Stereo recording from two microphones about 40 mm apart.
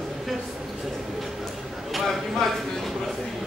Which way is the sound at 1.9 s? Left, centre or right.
Centre.